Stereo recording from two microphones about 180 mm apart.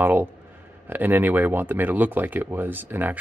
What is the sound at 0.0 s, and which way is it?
Speech, 10° right (ahead or behind).